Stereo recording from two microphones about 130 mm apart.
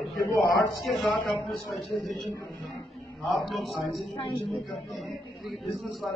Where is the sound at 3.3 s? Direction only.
Centre (ahead or behind).